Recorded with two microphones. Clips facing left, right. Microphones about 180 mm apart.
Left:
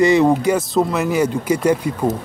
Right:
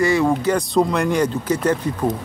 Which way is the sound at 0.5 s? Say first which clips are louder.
Even; 5° left (ahead or behind).